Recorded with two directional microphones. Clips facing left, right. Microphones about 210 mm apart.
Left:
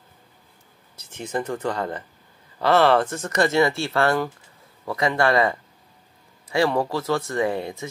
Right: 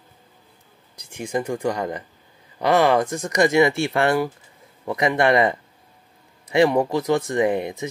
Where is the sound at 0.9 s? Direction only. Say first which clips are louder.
Right 2 dB; 10° right (ahead or behind).